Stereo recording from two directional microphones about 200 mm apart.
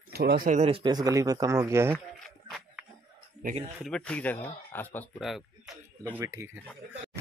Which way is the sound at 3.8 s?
5° left (ahead or behind).